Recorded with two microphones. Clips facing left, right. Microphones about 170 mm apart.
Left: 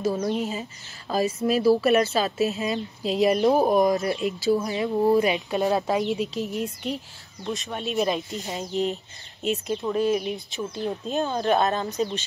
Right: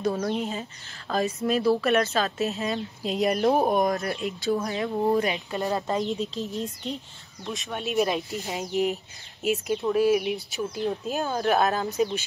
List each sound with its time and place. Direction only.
0.0 s a woman's voice: centre (ahead or behind)
5.2 s speech: 20° left (ahead or behind)
7.4 s a woman's voice: centre (ahead or behind)